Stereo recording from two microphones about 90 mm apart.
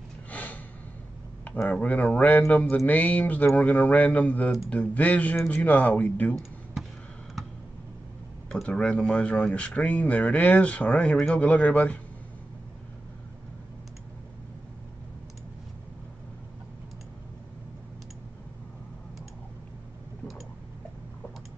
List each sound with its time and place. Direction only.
0.3 s snort: 20° left (ahead or behind)
1.4 s speech: 20° left (ahead or behind)
8.5 s speech: 10° left (ahead or behind)